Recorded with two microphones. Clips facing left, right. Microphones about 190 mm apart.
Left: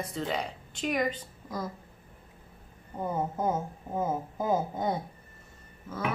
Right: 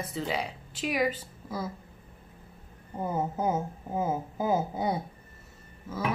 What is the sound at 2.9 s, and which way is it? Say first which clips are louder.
A woman's voice: right 1 dB; 5° right (ahead or behind).